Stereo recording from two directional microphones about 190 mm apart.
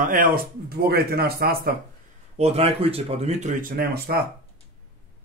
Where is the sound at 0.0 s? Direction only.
45° right (ahead or behind).